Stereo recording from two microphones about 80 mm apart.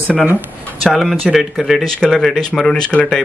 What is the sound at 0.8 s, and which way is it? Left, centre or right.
Speech, centre.